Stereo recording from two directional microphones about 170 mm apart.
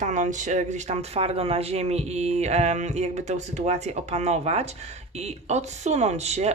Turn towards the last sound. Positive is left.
turn(degrees=-40)  # may be behind; listen again after turning